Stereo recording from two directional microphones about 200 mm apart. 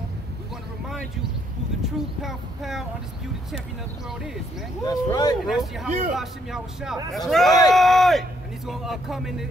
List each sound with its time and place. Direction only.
1.8 s speech: centre (ahead or behind)
4.8 s speech: 20° left (ahead or behind)
5.4 s speech: centre (ahead or behind)